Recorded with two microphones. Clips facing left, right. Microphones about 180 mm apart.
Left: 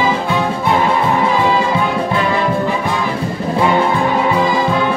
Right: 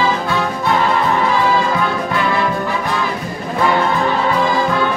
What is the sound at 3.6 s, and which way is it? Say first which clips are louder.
Brass instrument: left 1 dB; 15° left (ahead or behind).